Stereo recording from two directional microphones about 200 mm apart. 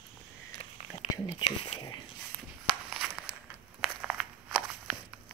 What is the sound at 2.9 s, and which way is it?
Crumpling, 5° right (ahead or behind).